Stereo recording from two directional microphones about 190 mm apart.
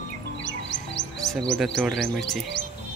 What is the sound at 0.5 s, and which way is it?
Music, 70° left (ahead or behind).